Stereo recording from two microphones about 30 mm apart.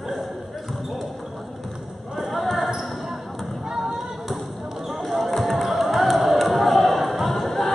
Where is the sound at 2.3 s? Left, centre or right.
Centre.